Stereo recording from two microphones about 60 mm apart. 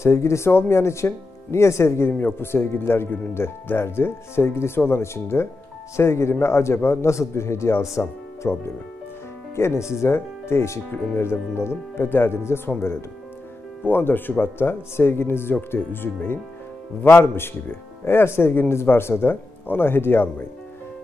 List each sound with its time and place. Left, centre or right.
0.0 s speech: left